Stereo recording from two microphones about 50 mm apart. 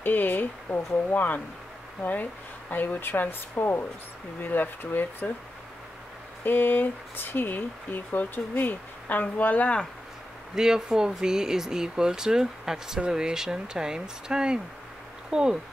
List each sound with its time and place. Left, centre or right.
0.0 s speech: left
2.7 s speech: left
6.4 s speech: left
10.5 s speech: centre